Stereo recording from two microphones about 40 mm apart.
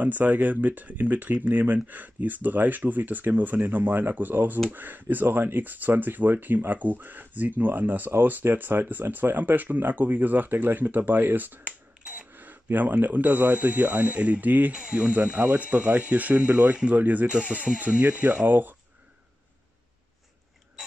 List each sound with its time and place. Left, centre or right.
0.0 s speech: right
11.6 s finger snapping: right
12.7 s speech: right
14.7 s speech: right
15.0 s speech: right
17.3 s speech: right
17.7 s speech: right